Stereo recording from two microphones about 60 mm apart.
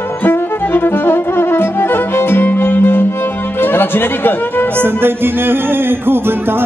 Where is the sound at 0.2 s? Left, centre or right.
Left.